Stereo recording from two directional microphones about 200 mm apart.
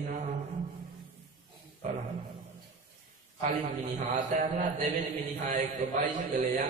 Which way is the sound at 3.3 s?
40° right (ahead or behind).